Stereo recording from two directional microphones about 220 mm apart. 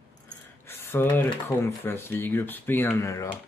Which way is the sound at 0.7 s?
10° left (ahead or behind).